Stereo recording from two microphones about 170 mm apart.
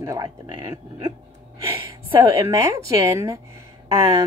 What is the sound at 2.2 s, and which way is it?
A woman's voice, 15° right (ahead or behind).